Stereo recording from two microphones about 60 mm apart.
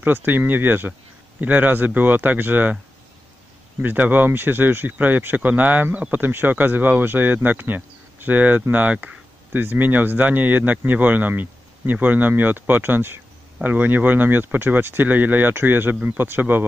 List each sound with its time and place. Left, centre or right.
0.0 s speech: right
3.8 s speech: right